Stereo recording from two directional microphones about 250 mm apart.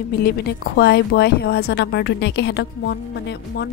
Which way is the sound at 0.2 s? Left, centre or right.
Left.